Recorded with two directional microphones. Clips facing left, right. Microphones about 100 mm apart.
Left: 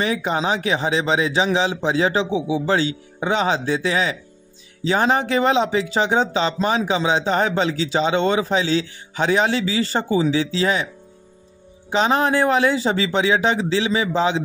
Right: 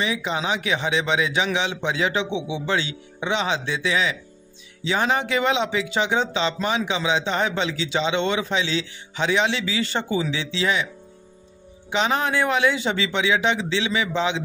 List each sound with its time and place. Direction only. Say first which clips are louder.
0.0 s speech: left 4 dB; 45° left (ahead or behind)
11.9 s speech: left 4 dB; 35° left (ahead or behind)